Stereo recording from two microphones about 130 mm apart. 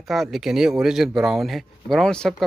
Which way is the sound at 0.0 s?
Centre (ahead or behind).